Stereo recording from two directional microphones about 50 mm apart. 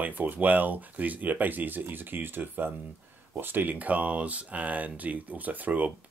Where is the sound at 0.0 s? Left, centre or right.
Right.